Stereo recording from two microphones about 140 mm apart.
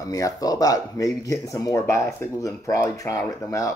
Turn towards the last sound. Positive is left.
turn(degrees=25)  # may be behind; listen again after turning